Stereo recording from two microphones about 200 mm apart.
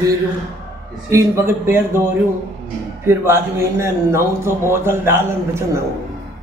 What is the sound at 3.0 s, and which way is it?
A man's voice, 15° right (ahead or behind).